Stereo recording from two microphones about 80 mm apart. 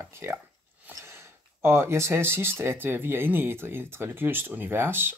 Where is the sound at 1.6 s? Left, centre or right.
Right.